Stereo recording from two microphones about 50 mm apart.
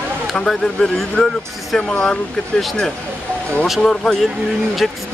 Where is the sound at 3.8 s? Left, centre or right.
Centre.